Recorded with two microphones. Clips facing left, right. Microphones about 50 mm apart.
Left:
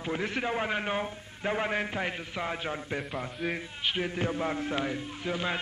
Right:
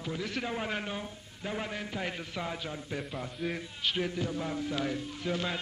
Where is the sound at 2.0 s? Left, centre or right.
Left.